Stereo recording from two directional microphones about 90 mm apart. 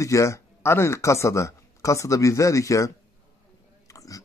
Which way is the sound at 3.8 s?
40° left (ahead or behind).